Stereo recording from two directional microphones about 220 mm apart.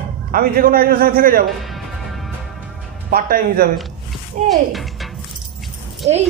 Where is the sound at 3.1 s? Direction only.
40° right (ahead or behind).